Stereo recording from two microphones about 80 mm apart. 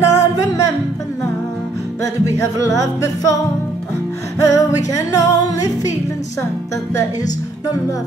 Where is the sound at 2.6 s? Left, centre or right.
Left.